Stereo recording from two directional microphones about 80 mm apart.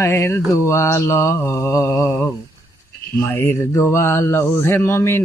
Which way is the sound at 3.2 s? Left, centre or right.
Left.